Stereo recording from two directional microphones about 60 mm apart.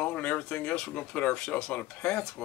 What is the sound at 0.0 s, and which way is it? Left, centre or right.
Speech, left.